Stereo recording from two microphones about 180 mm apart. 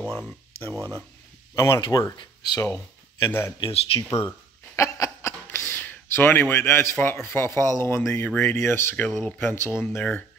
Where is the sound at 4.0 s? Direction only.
15° left (ahead or behind).